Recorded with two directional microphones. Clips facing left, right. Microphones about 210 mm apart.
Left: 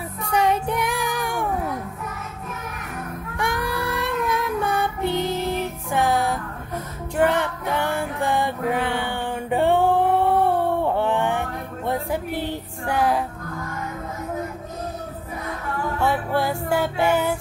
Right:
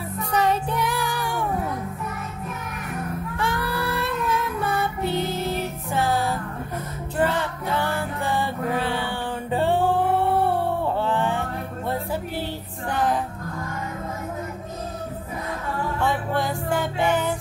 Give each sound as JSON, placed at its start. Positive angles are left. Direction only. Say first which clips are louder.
{"t": 0.2, "sound": "child singing", "louder": "left 1 dB", "side_deg": 10}
{"t": 3.3, "sound": "child singing", "louder": "left 2 dB", "side_deg": 15}
{"t": 7.2, "sound": "music", "louder": "left 3 dB", "side_deg": 15}
{"t": 11.0, "sound": "music", "louder": "left 2 dB", "side_deg": 15}
{"t": 12.4, "sound": "music", "louder": "left 3 dB", "side_deg": 10}
{"t": 16.0, "sound": "music", "louder": "left 3 dB", "side_deg": 10}